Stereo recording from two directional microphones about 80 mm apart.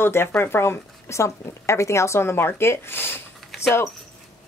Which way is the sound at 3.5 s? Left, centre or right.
Centre.